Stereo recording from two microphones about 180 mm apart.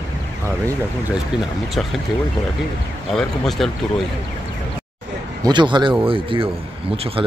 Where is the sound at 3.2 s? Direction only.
Centre (ahead or behind).